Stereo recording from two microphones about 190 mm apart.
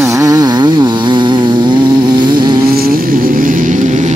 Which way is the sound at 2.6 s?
50° right (ahead or behind).